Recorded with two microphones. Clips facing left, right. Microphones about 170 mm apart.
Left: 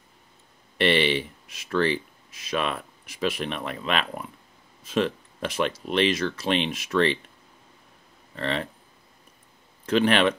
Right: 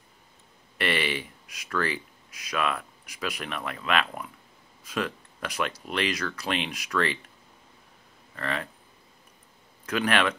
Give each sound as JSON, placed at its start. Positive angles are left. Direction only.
{"t": 0.7, "sound": "speech", "side_deg": 25}
{"t": 8.4, "sound": "speech", "side_deg": 25}
{"t": 9.8, "sound": "speech", "side_deg": 25}